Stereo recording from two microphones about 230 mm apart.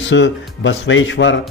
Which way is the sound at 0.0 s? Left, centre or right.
Left.